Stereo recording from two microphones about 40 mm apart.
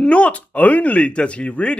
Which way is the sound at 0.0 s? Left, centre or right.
Left.